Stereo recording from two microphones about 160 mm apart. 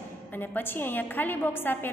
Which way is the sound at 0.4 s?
15° left (ahead or behind).